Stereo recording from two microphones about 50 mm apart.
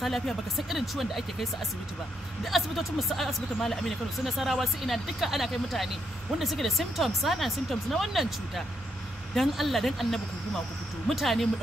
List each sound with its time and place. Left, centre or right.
0.7 s speech: centre